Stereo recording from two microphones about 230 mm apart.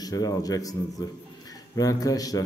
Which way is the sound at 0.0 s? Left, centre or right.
Centre.